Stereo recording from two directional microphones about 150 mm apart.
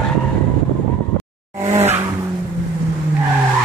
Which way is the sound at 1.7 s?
45° right (ahead or behind).